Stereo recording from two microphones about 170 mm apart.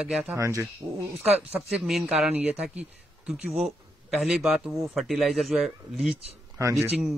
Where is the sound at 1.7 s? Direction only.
Centre (ahead or behind).